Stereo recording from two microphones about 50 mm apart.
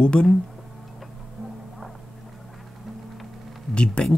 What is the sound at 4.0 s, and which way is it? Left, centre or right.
Speech, left.